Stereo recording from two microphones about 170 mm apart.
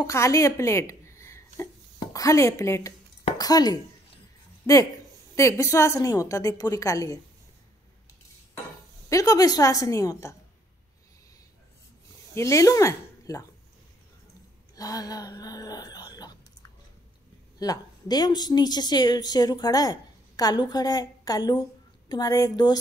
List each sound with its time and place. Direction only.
0.0 s a woman's voice: 15° left (ahead or behind)
5.3 s a woman's voice: 15° left (ahead or behind)
9.1 s a woman's voice: 20° left (ahead or behind)
12.4 s speech: 20° left (ahead or behind)
14.8 s speech: 20° left (ahead or behind)
17.6 s a woman's voice: 20° left (ahead or behind)